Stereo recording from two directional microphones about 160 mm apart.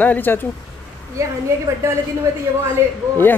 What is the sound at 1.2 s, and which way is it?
Speech, 20° right (ahead or behind).